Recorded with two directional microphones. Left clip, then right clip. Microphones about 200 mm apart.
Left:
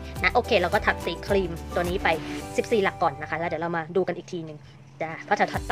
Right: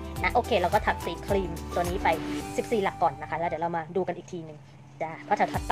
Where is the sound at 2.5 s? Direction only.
15° left (ahead or behind).